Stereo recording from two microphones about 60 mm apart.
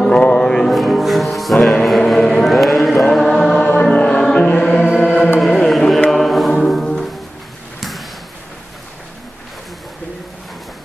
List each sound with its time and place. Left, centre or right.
0.0 s music: centre
3.8 s music: left
4.4 s choir: left
5.4 s carnatic music: centre
6.0 s choir: centre
7.8 s a sound: centre